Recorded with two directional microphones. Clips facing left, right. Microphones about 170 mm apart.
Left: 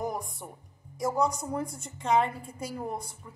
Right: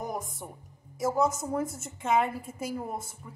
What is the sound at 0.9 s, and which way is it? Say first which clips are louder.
A woman's voice: right 1 dB; 5° right (ahead or behind).